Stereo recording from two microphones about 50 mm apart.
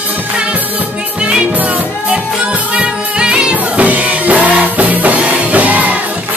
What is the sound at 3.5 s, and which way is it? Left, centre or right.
Music, right.